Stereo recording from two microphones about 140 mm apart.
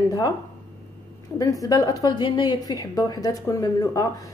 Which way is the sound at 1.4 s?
25° left (ahead or behind).